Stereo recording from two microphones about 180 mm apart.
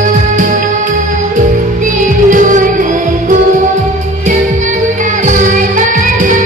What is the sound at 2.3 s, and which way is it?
Music, 45° right (ahead or behind).